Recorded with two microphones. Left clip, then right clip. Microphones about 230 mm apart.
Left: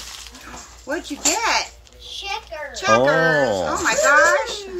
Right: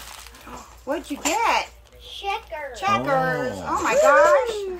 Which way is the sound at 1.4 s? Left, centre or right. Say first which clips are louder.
Right 1 dB; right.